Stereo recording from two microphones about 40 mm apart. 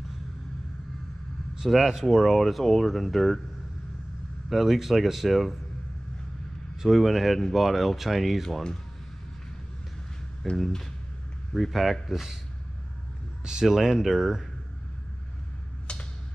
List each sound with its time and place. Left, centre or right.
1.7 s speech: centre
4.5 s speech: centre
6.8 s speech: centre
10.6 s speech: centre
13.5 s speech: centre
15.9 s a sound: left